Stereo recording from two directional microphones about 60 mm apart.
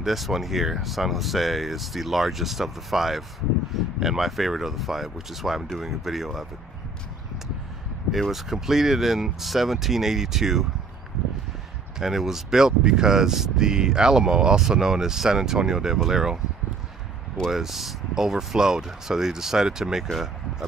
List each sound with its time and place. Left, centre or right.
0.0 s speech: centre
8.1 s speech: centre
12.0 s speech: centre
17.5 s speech: centre